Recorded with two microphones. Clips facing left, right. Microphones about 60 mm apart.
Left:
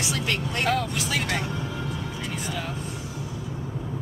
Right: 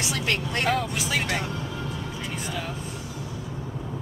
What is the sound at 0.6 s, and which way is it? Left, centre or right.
Speech, centre.